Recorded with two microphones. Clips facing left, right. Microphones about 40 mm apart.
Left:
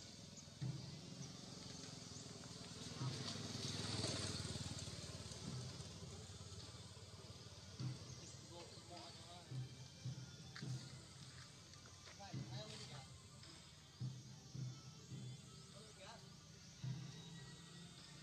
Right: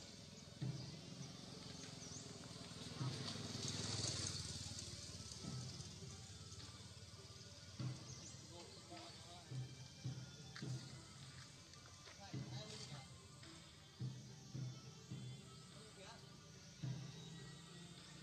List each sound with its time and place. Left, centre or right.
0.7 s vehicle: centre; by 5.4 s left
5.4 s vehicle: centre
7.7 s music: centre
8.9 s a sound: centre
10.0 s music: centre
12.2 s a sound: centre
14.5 s music: centre
16.8 s music: centre